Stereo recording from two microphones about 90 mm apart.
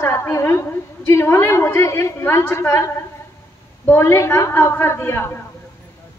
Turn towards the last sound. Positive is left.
turn(degrees=30)  # may be behind; listen again after turning